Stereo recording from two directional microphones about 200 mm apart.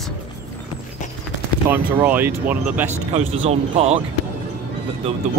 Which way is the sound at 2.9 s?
35° right (ahead or behind).